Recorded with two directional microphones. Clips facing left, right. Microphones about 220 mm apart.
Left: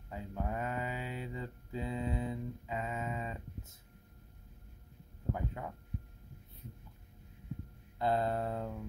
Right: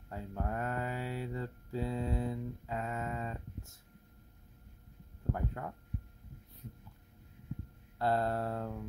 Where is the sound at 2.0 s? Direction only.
Centre (ahead or behind).